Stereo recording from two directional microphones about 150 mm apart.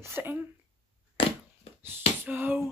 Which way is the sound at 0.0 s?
15° right (ahead or behind).